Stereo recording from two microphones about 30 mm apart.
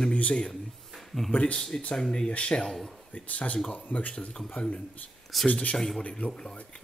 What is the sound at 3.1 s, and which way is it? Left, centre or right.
Speech, left.